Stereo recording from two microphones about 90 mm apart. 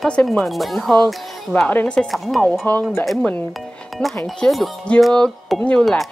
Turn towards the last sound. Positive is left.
turn(degrees=10)  # may be behind; listen again after turning